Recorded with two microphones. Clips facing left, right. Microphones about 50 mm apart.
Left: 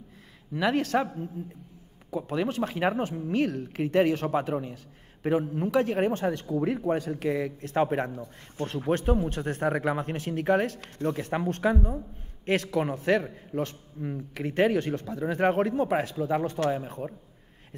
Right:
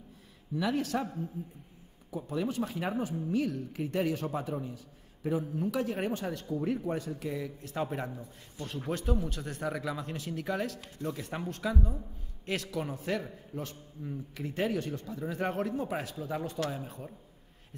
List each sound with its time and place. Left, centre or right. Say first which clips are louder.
0.6 s a man's voice: left 6 dB; left
2.1 s a man's voice: left 4 dB; left
6.5 s a man's voice: left 3 dB; left
8.9 s speech: left 7 dB; left
10.8 s a man's voice: left 7 dB; left